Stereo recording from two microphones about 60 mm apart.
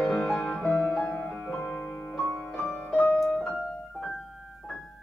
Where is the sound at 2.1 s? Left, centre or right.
Centre.